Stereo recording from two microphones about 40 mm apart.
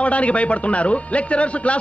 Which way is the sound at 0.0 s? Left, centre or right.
Left.